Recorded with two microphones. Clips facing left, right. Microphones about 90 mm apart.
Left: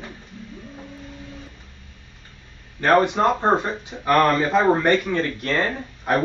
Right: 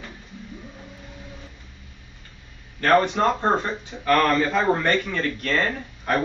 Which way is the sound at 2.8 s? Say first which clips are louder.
Left 1 dB; 15° left (ahead or behind).